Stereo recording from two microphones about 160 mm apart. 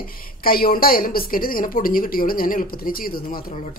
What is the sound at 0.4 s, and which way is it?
A woman's voice, 65° left (ahead or behind).